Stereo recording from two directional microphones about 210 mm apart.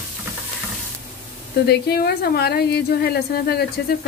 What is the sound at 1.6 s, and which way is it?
A woman's voice, 50° left (ahead or behind).